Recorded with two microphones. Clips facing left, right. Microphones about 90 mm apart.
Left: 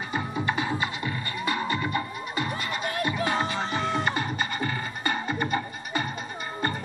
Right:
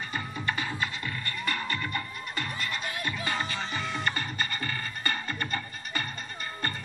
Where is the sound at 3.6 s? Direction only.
35° left (ahead or behind).